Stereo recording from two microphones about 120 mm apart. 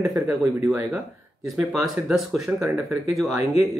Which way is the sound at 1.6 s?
5° right (ahead or behind).